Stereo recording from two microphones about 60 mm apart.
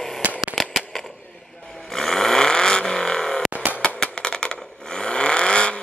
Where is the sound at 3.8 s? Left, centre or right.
Centre.